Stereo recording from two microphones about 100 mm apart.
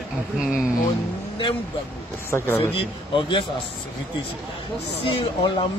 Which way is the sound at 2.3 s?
25° left (ahead or behind).